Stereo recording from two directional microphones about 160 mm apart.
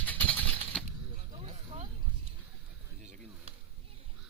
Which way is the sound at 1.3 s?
35° right (ahead or behind).